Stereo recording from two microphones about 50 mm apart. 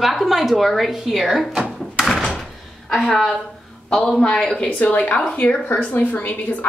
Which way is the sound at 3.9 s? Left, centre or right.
Centre.